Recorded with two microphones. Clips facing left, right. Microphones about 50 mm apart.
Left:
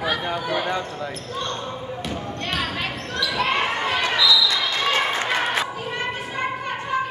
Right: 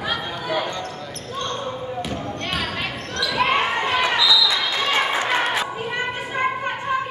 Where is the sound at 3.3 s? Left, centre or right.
Right.